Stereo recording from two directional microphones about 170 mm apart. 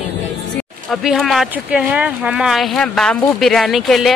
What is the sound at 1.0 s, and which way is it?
Speech, centre (ahead or behind).